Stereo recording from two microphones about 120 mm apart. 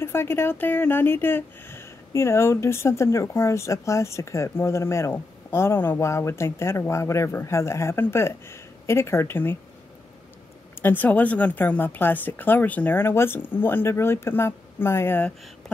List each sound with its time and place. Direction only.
0.0 s speech: 20° left (ahead or behind)
10.8 s speech: 15° left (ahead or behind)